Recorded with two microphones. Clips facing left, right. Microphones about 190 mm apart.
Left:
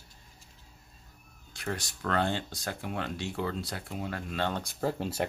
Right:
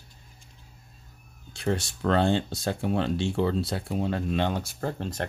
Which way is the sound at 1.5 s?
30° right (ahead or behind).